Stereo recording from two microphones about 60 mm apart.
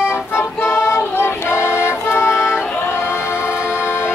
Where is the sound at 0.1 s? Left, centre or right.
Left.